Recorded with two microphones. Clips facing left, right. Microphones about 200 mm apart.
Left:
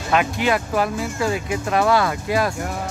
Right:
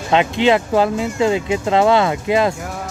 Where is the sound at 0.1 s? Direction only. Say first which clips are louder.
Right 5 dB; 25° right (ahead or behind).